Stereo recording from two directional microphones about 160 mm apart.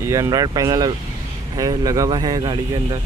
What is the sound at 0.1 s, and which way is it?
Speech, 20° right (ahead or behind).